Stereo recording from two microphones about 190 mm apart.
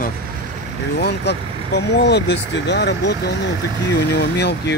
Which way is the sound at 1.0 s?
60° left (ahead or behind).